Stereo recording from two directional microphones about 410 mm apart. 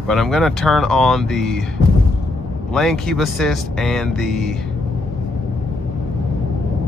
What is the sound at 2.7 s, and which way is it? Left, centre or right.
Speech, centre.